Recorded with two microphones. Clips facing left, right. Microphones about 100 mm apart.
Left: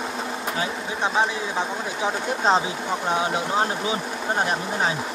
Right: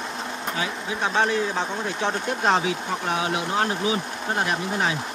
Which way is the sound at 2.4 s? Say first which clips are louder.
Left 1 dB; 25° left (ahead or behind).